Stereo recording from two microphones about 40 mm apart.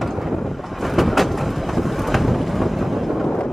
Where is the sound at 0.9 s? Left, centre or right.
Centre.